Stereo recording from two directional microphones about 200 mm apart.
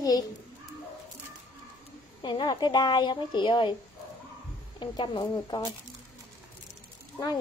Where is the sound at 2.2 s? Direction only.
20° left (ahead or behind).